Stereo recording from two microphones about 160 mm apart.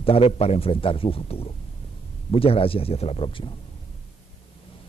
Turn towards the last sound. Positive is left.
turn(degrees=35)  # may be behind; listen again after turning